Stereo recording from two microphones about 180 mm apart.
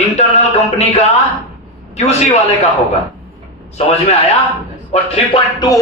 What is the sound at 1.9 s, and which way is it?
Speech, 40° left (ahead or behind).